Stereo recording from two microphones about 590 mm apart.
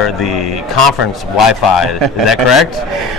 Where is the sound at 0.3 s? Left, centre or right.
Left.